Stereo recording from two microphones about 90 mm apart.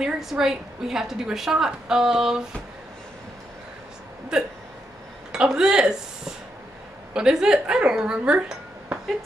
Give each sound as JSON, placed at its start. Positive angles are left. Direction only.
{"t": 0.0, "sound": "a woman's voice", "side_deg": -5}
{"t": 4.3, "sound": "speech", "side_deg": -10}